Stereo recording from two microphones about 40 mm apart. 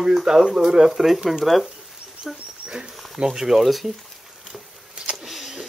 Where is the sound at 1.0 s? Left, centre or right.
Centre.